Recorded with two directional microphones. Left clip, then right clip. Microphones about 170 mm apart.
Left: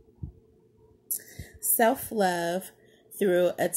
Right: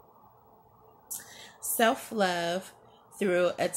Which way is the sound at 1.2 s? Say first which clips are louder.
Even; 40° left (ahead or behind).